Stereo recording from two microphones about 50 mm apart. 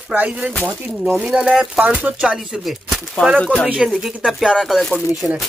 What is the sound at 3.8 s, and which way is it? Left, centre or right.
Speech, centre.